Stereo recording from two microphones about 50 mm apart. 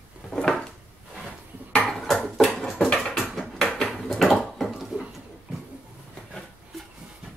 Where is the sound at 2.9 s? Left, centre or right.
Centre.